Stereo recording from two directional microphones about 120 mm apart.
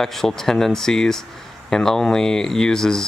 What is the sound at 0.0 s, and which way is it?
Speech, centre (ahead or behind).